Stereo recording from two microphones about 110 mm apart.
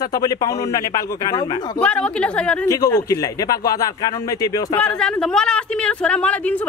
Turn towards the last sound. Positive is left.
turn(degrees=10)  # may be behind; listen again after turning